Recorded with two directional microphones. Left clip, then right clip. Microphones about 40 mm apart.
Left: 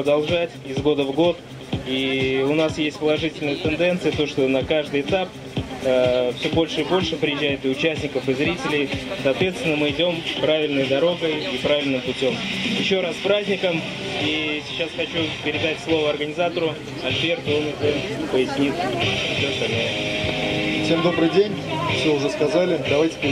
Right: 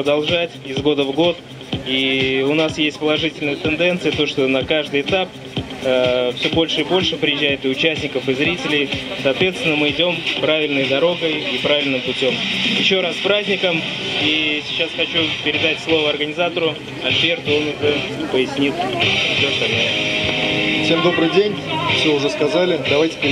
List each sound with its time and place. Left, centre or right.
0.0 s speech: right
18.9 s music: right